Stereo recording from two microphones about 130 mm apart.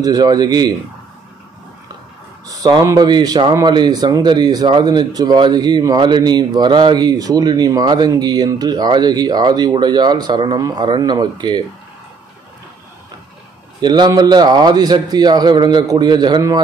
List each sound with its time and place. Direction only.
0.0 s speech: 30° right (ahead or behind)
2.4 s speech: 30° right (ahead or behind)
13.7 s speech: 35° right (ahead or behind)